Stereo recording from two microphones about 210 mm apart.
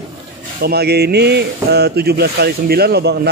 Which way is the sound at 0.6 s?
50° right (ahead or behind).